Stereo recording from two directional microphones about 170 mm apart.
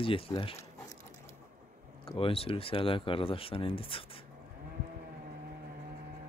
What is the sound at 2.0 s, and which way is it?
Speech, 35° left (ahead or behind).